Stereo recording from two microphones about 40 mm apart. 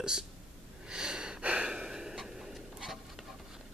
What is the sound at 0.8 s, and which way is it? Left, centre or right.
Gasp, centre.